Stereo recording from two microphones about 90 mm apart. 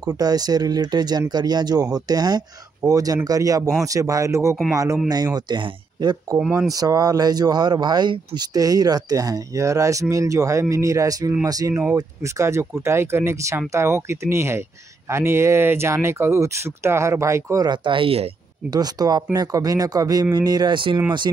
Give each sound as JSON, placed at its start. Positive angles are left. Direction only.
{"t": 0.2, "sound": "speech", "side_deg": -45}
{"t": 5.1, "sound": "speech", "side_deg": -50}
{"t": 6.7, "sound": "speech", "side_deg": -40}
{"t": 17.6, "sound": "speech", "side_deg": -70}
{"t": 18.7, "sound": "speech", "side_deg": -50}